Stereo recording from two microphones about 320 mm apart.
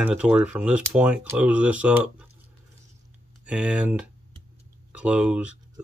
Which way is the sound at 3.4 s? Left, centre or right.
Centre.